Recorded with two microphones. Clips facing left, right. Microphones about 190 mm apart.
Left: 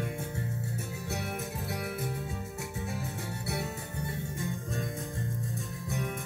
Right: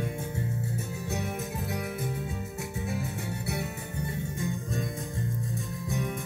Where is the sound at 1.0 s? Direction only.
20° right (ahead or behind).